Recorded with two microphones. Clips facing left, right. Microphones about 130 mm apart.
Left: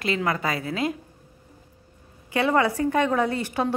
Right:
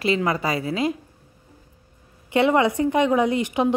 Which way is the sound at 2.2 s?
20° right (ahead or behind).